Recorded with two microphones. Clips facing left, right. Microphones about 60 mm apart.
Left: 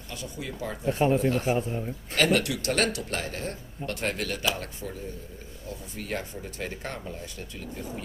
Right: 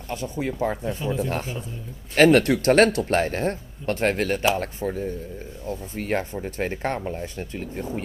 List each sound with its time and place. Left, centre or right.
0.1 s speech: right
0.8 s speech: left
2.1 s speech: right